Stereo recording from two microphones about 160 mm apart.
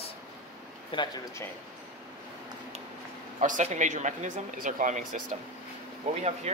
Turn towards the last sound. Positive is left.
turn(degrees=-45)  # may be behind; listen again after turning